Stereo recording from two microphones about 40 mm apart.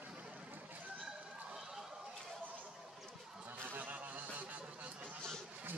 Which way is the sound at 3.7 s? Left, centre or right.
Right.